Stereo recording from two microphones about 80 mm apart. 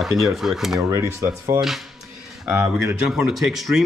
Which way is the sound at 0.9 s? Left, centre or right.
Right.